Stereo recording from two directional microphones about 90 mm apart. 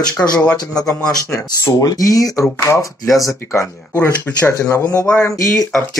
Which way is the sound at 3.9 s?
25° left (ahead or behind).